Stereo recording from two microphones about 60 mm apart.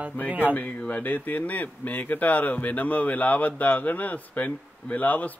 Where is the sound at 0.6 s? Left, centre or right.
Left.